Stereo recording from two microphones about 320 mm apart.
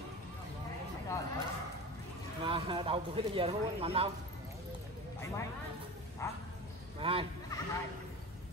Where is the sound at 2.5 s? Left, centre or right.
Centre.